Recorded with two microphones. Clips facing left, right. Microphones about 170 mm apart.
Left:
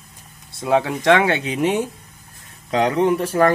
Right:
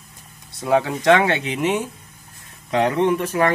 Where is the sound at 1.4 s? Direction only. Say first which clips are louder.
Left 2 dB; 40° left (ahead or behind).